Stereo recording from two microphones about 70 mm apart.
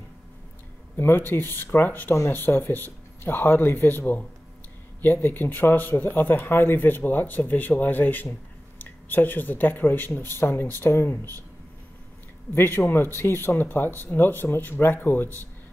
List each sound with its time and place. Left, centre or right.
0.9 s speech: left
12.5 s speech: left